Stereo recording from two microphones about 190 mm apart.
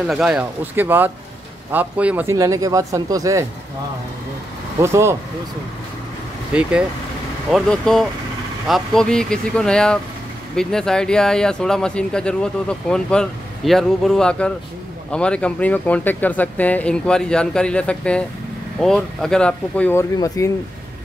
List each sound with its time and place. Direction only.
0.0 s speech: 5° right (ahead or behind)
4.8 s speech: 15° right (ahead or behind)
6.5 s speech: 5° right (ahead or behind); by 20.5 s 15° left (ahead or behind)